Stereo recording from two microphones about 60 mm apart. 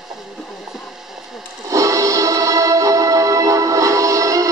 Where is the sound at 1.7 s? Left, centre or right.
Right.